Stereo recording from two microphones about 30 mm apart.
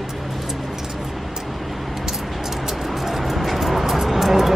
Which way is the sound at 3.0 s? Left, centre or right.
Centre.